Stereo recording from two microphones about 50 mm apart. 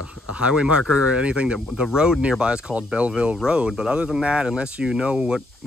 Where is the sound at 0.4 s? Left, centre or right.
Centre.